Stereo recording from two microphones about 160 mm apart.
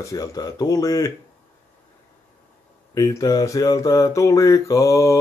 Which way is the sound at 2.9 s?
20° left (ahead or behind).